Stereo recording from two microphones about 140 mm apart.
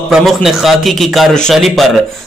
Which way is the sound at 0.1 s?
Centre (ahead or behind).